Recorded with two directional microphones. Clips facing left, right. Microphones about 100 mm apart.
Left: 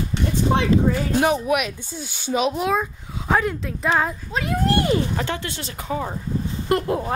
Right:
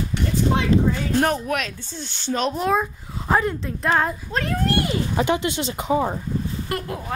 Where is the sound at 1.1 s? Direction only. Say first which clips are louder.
Left 2 dB; 5° left (ahead or behind).